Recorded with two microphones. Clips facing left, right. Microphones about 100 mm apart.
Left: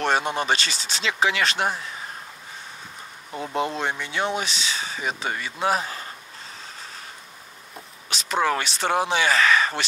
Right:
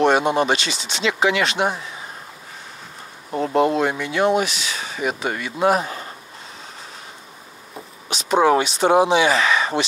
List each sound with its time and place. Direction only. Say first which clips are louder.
0.0 s speech: right 7 dB; 5° right (ahead or behind)
3.5 s speech: right 8 dB; 20° right (ahead or behind)
3.8 s speech: right 7 dB; 5° right (ahead or behind)
7.7 s a sound: right 4 dB; 5° right (ahead or behind)
8.5 s speech: right 8 dB; 5° right (ahead or behind)